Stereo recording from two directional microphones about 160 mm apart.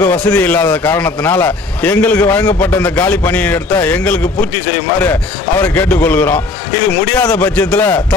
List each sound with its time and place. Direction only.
0.0 s a man's voice: 5° left (ahead or behind)
5.6 s a man's voice: 10° left (ahead or behind)